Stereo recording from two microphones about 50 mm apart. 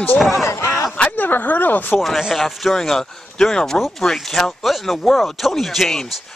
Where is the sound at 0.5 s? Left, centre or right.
Left.